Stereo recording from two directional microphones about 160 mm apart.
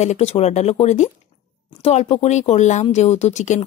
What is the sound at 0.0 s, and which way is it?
Speech, 45° left (ahead or behind).